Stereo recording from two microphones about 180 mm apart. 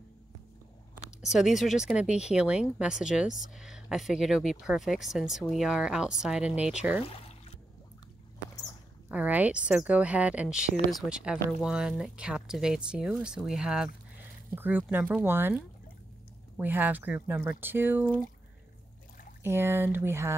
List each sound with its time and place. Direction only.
1.2 s speech: centre (ahead or behind)
7.0 s a sound: 30° left (ahead or behind)
9.1 s speech: 10° right (ahead or behind)
19.4 s speech: 15° right (ahead or behind)